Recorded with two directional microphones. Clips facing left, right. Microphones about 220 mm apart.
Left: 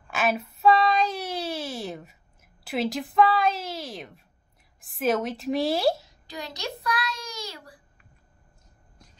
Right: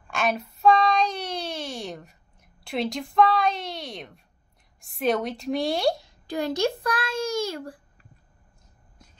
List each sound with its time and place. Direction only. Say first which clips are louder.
0.1 s child singing: even; 5° left (ahead or behind)
4.7 s a woman's voice: even; centre (ahead or behind)
6.2 s a child's voice: right 11 dB; 50° right (ahead or behind)